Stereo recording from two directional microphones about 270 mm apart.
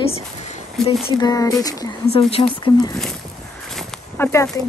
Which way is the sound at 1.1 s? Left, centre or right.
Centre.